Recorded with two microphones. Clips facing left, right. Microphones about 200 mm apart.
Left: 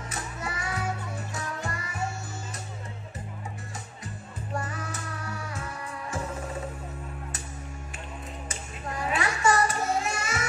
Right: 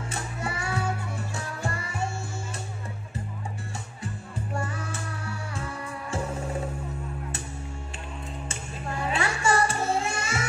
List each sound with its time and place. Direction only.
0.1 s music: 30° right (ahead or behind)
4.6 s music: 30° right (ahead or behind)
8.5 s music: 30° right (ahead or behind)